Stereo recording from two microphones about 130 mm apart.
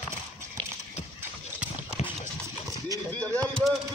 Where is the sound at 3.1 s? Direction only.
10° left (ahead or behind).